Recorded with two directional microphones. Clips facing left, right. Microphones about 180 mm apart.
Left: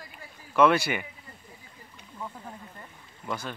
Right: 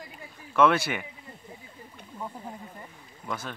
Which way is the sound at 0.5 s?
Centre (ahead or behind).